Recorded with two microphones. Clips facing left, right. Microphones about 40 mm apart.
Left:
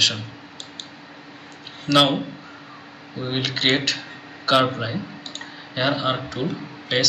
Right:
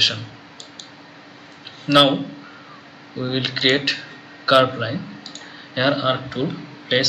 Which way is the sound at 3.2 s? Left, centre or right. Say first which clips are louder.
Right 2 dB; centre.